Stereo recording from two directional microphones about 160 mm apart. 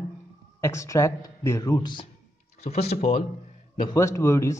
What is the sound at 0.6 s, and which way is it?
Speech, 15° left (ahead or behind).